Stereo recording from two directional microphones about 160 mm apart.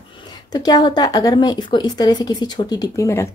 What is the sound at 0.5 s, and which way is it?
Speech, 25° left (ahead or behind).